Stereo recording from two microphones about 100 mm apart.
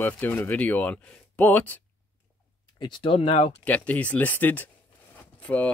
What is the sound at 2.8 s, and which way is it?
Speech, 55° left (ahead or behind).